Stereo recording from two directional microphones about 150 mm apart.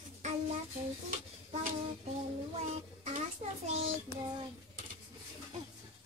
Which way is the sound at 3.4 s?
50° right (ahead or behind).